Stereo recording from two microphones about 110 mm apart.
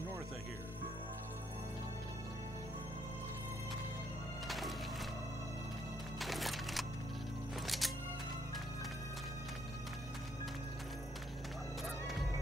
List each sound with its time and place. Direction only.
4.5 s music: centre (ahead or behind)
6.1 s music: centre (ahead or behind)
11.8 s music: centre (ahead or behind)